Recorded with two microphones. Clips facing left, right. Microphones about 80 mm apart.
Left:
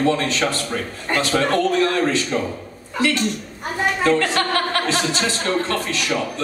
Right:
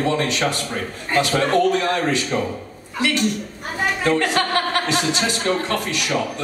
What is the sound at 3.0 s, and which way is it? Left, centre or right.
A woman's voice, centre.